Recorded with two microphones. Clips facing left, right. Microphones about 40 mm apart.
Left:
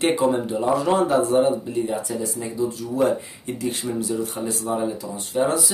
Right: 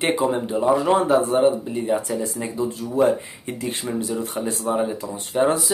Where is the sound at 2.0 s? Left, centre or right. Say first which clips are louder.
Right 2 dB; right.